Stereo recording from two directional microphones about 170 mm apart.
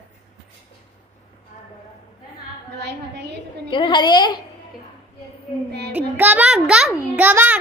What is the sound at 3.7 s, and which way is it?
Speech, 25° left (ahead or behind).